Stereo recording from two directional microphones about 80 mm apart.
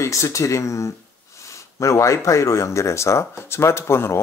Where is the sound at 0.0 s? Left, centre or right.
Left.